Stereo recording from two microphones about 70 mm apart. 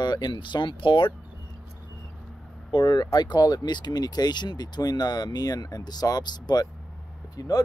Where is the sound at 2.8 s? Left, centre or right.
Left.